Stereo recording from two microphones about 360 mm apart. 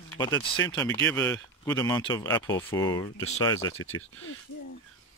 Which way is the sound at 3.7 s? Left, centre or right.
Left.